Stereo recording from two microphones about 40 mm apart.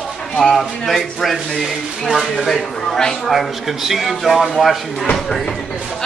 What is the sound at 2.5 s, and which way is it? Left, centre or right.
Speech, centre.